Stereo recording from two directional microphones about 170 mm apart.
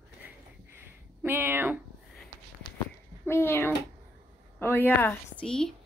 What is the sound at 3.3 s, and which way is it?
A child's voice, 15° left (ahead or behind).